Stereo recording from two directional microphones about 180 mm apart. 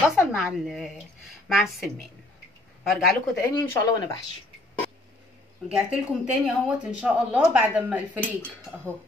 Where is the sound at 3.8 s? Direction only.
20° left (ahead or behind).